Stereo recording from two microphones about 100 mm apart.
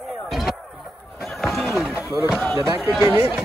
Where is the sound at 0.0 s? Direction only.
Centre (ahead or behind).